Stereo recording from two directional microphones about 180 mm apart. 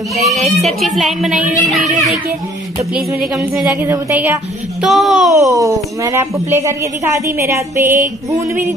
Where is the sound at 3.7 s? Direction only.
15° right (ahead or behind).